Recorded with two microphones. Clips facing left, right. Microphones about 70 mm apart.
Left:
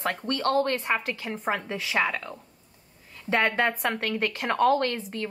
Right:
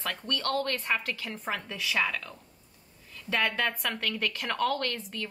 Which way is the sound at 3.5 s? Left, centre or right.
Left.